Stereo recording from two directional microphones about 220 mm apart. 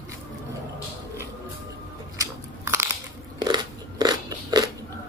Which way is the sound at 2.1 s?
10° right (ahead or behind).